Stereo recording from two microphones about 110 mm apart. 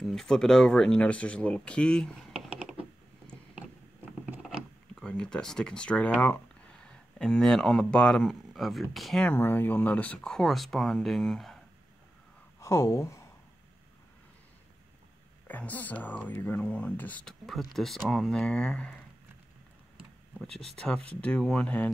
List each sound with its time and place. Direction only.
0.0 s speech: 5° left (ahead or behind)
5.0 s speech: 5° left (ahead or behind)
9.3 s speech: 20° left (ahead or behind); by 11.6 s centre (ahead or behind)
12.5 s speech: 30° left (ahead or behind)
15.4 s speech: 15° left (ahead or behind)
17.3 s speech: centre (ahead or behind)
20.3 s speech: 5° left (ahead or behind)